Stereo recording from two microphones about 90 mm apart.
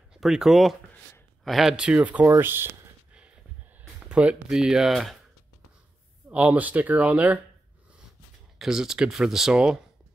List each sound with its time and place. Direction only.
0.1 s speech: 5° right (ahead or behind)
2.2 s speech: 30° right (ahead or behind)
4.1 s speech: 10° right (ahead or behind)
6.3 s speech: 20° right (ahead or behind)
8.5 s speech: 5° right (ahead or behind)